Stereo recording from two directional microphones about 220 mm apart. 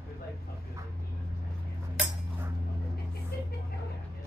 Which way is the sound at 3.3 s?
45° left (ahead or behind).